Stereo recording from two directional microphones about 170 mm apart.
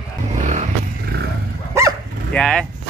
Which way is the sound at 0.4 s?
45° right (ahead or behind).